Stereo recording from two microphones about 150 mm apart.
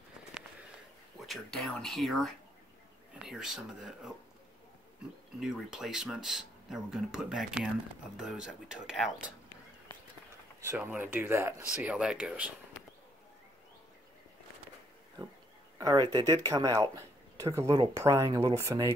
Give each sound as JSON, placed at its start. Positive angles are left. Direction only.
{"t": 1.2, "sound": "speech", "side_deg": 0}
{"t": 5.4, "sound": "speech", "side_deg": 0}
{"t": 10.6, "sound": "speech", "side_deg": -15}
{"t": 15.8, "sound": "speech", "side_deg": -30}